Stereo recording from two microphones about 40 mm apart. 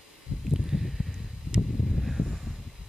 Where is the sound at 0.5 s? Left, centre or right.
Centre.